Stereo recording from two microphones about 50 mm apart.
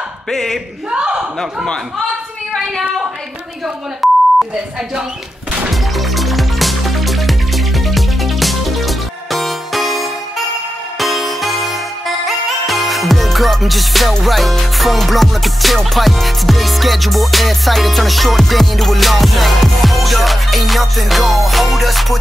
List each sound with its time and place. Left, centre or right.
0.3 s a man's voice: centre
0.8 s a sound: right
3.6 s beep: centre
5.7 s music: centre